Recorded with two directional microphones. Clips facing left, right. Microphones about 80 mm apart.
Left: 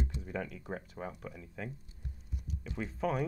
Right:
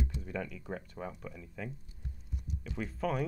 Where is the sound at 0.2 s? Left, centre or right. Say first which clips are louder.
Even; centre.